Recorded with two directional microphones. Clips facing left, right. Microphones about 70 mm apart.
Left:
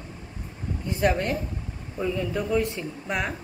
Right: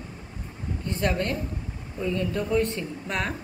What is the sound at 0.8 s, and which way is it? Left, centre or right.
A woman's voice, centre.